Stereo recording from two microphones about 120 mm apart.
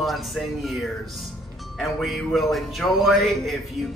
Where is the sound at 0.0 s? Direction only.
Centre (ahead or behind).